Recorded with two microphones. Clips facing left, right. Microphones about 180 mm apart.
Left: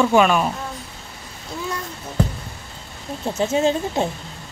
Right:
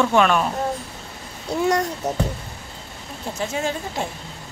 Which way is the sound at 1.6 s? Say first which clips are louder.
Right 10 dB; 75° right (ahead or behind).